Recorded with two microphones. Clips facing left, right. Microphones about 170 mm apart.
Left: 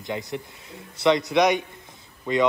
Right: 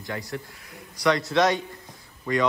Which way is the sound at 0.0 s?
20° left (ahead or behind).